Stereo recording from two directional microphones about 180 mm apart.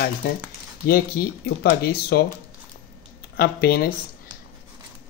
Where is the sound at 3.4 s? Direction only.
60° left (ahead or behind).